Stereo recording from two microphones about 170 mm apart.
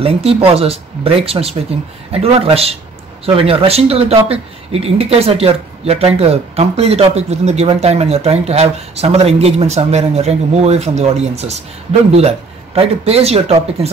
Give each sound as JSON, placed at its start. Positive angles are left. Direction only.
{"t": 0.0, "sound": "speech", "side_deg": -35}